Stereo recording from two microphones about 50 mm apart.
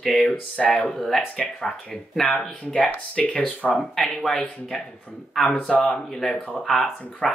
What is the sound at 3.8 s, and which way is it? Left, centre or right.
Speech, centre.